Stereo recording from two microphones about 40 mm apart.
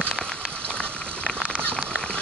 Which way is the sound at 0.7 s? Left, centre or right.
Right.